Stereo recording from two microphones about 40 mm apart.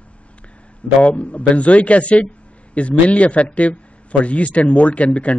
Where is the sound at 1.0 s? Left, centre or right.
Left.